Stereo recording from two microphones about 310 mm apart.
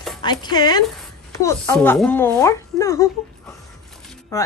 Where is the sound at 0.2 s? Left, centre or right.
Centre.